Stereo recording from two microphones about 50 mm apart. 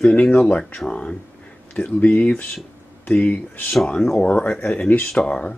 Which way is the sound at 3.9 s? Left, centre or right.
Centre.